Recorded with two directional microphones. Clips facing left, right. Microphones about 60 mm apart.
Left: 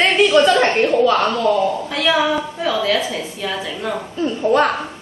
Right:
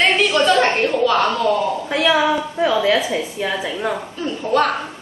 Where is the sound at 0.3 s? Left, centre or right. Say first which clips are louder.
Left 2 dB; centre.